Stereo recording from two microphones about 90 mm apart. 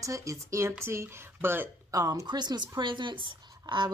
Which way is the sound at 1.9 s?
40° right (ahead or behind).